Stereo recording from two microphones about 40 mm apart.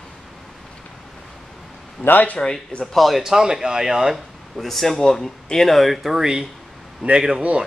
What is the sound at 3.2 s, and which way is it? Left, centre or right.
Speech, centre.